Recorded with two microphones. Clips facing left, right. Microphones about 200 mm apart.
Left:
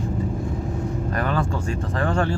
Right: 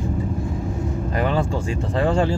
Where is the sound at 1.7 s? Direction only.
15° right (ahead or behind).